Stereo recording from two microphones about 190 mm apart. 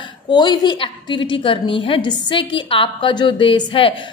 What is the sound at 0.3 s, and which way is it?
A woman's voice, 20° left (ahead or behind).